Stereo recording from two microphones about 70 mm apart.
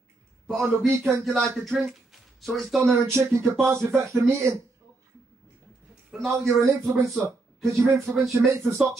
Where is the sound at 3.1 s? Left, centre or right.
Right.